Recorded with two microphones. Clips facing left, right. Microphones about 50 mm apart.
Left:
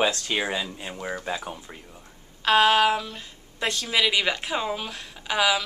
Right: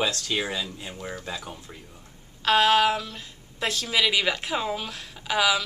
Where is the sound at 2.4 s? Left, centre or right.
Centre.